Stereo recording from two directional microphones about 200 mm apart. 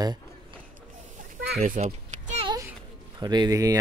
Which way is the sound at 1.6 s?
40° right (ahead or behind).